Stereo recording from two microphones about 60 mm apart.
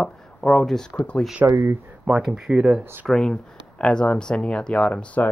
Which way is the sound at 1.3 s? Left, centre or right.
Right.